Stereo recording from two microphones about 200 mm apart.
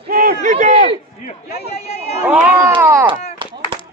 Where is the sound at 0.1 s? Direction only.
45° right (ahead or behind).